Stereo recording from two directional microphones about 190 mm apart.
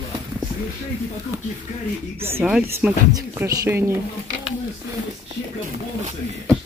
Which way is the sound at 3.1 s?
15° right (ahead or behind).